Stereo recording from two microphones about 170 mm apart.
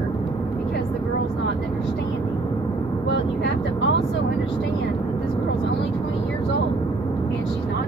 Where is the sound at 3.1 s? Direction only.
90° left.